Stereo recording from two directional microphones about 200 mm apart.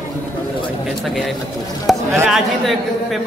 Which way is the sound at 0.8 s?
Centre (ahead or behind).